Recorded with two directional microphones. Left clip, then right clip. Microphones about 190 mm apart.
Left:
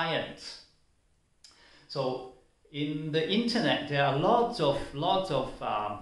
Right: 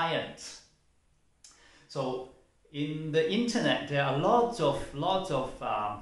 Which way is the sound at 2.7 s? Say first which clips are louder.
Right 1 dB; 15° left (ahead or behind).